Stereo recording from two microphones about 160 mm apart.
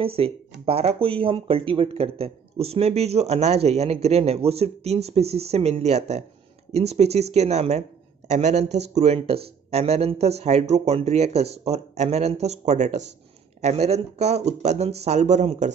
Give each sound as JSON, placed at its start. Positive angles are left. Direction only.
{"t": 0.0, "sound": "speech", "side_deg": -35}